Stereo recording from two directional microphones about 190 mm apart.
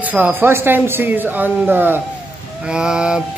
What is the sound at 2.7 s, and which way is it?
Mantra, 5° right (ahead or behind).